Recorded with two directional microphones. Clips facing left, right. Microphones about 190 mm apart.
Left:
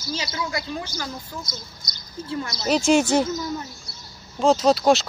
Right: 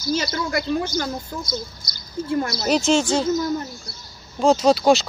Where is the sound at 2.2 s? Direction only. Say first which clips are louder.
Right 6 dB; 55° right (ahead or behind).